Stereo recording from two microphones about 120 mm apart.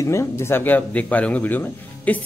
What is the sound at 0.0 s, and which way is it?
A man's voice, 25° left (ahead or behind).